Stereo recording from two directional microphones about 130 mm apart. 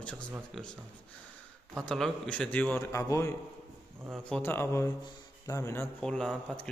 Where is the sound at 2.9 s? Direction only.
25° left (ahead or behind).